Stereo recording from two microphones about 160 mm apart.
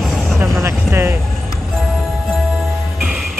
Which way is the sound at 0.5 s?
15° right (ahead or behind).